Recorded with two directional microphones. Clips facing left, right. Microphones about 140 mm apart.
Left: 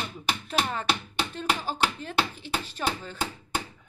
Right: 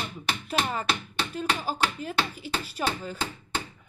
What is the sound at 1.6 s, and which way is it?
Speech, 5° right (ahead or behind).